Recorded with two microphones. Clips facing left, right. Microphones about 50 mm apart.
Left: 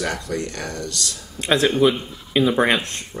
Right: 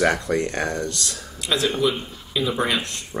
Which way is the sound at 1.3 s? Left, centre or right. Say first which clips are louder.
Left 5 dB; left.